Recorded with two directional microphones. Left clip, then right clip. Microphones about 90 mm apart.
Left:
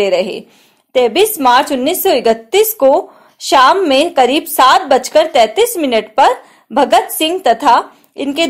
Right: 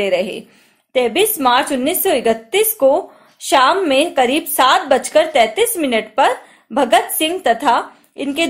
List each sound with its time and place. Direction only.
0.0 s a woman's voice: 35° left (ahead or behind)